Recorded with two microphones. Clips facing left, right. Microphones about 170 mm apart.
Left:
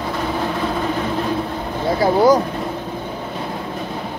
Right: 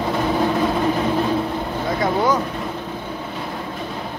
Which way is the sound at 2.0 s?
35° left (ahead or behind).